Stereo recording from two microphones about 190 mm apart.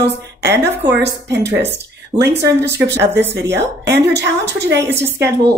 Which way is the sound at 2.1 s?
15° right (ahead or behind).